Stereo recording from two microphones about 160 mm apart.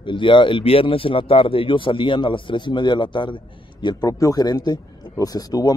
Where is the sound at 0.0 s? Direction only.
30° left (ahead or behind).